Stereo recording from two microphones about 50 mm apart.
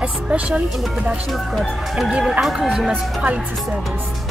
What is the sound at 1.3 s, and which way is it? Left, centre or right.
A woman's voice, centre.